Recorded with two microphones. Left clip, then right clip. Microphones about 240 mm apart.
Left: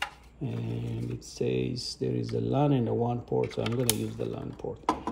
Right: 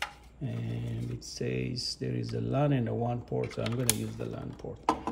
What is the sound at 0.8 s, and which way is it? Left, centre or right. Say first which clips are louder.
Speech: left 3 dB; centre.